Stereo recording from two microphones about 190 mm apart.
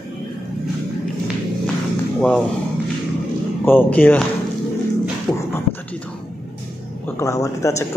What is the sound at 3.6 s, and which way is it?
Speech, 10° left (ahead or behind).